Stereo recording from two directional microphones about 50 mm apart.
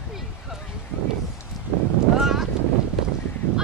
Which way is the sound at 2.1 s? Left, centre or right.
Centre.